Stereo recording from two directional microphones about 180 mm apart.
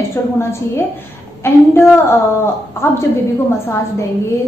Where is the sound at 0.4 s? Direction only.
15° left (ahead or behind).